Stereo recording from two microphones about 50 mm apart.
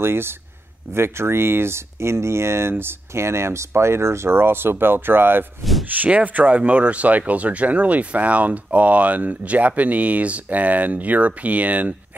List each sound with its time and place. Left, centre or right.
0.0 s speech: right
5.9 s speech: right